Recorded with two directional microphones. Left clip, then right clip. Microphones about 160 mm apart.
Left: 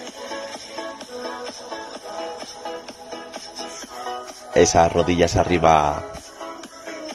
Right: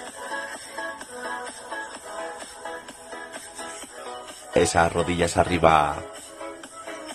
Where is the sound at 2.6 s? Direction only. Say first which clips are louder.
Left 3 dB; 45° left (ahead or behind).